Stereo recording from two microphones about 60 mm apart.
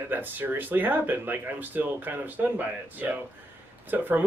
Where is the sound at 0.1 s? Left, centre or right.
Right.